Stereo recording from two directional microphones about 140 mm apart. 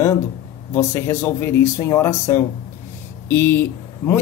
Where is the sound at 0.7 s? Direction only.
20° left (ahead or behind).